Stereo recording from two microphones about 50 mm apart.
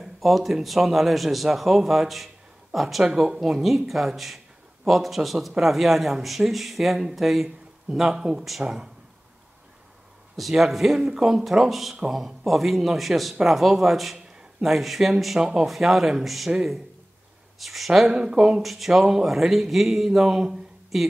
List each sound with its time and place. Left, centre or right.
0.0 s speech: centre
10.3 s speech: centre
17.6 s speech: centre
18.0 s speech: centre
18.6 s speech: centre